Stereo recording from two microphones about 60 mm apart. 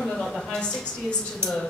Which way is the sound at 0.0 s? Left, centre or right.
Centre.